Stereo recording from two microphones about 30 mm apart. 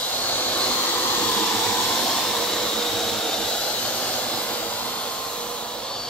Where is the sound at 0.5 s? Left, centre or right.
Left.